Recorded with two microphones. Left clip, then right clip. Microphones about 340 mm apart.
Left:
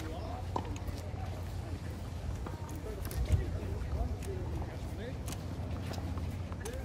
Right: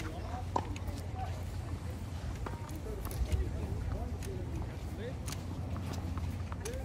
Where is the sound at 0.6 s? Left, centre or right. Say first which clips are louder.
Right 3 dB; right.